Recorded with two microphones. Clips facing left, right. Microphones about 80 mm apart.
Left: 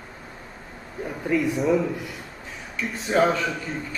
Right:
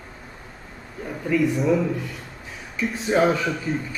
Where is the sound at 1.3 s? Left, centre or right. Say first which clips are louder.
Right 1 dB; centre.